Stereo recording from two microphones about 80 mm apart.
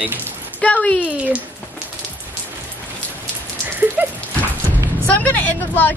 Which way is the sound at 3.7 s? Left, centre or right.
Right.